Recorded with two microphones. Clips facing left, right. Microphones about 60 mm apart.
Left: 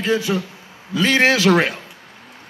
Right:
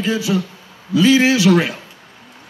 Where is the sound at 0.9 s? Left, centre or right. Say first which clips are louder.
Right 3 dB; left.